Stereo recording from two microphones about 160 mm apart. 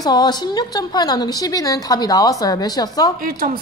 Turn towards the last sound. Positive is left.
turn(degrees=-65)  # may be behind; listen again after turning